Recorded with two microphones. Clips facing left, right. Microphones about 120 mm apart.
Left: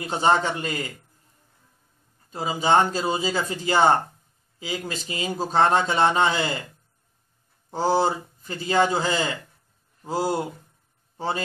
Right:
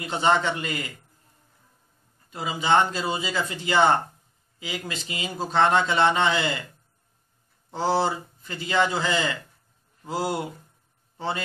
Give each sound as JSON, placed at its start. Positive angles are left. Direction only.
{"t": 0.0, "sound": "a man's voice", "side_deg": 40}
{"t": 2.3, "sound": "a man's voice", "side_deg": 35}
{"t": 7.7, "sound": "a man's voice", "side_deg": 40}